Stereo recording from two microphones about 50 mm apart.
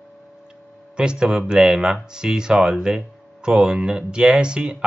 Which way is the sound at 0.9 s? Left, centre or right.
Centre.